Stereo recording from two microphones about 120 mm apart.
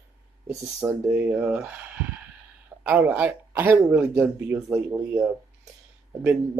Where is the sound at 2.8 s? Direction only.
15° right (ahead or behind).